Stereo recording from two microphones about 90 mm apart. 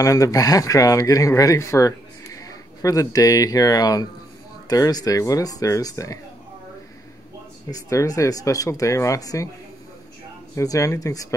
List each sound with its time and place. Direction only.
0.0 s speech: 40° left (ahead or behind)
7.7 s speech: 40° left (ahead or behind)
10.5 s speech: 35° left (ahead or behind)